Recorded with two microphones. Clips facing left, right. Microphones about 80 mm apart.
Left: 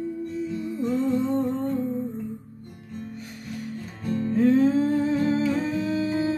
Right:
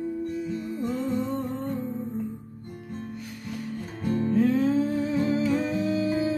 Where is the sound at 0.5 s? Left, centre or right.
Right.